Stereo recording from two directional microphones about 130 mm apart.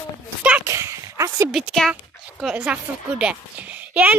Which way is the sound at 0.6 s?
20° right (ahead or behind).